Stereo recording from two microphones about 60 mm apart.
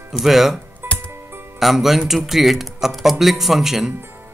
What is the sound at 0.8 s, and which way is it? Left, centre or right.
Music, right.